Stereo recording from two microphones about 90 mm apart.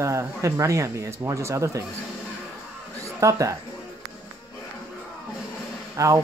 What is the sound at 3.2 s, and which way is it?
Speech, 35° right (ahead or behind).